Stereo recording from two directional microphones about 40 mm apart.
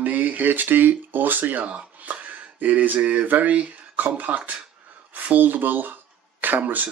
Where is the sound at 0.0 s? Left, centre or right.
Right.